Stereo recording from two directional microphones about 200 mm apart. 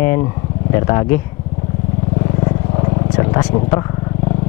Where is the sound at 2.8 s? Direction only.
25° left (ahead or behind).